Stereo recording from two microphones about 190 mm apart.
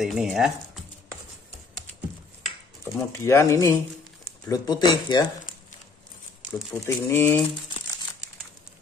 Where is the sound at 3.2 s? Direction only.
15° left (ahead or behind).